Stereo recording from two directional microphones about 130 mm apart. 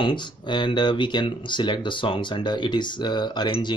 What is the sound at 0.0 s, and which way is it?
Speech, 35° left (ahead or behind).